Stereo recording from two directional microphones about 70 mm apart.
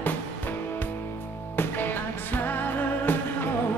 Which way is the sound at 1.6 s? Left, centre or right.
Left.